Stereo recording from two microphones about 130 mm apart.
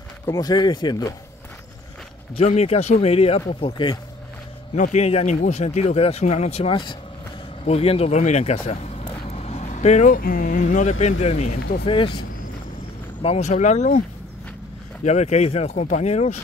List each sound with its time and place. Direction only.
0.3 s speech: 30° left (ahead or behind)
2.3 s speech: 55° left (ahead or behind); by 4.0 s 35° left (ahead or behind)
4.7 s speech: 65° left (ahead or behind)
11.8 s speech: 40° left (ahead or behind)
13.2 s speech: 55° left (ahead or behind)
15.0 s speech: 55° left (ahead or behind)